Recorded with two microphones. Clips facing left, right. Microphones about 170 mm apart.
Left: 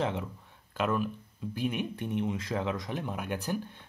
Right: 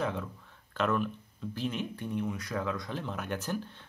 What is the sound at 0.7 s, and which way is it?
Speech, 10° left (ahead or behind).